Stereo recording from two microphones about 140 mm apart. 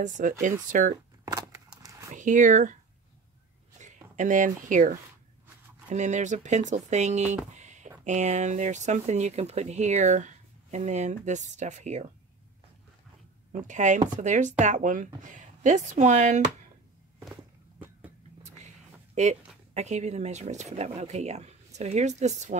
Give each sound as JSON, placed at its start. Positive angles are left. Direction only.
{"t": 0.0, "sound": "speech", "side_deg": -65}
{"t": 1.2, "sound": "a sound", "side_deg": -25}
{"t": 2.1, "sound": "speech", "side_deg": -65}
{"t": 13.5, "sound": "speech", "side_deg": -60}
{"t": 19.1, "sound": "speech", "side_deg": -55}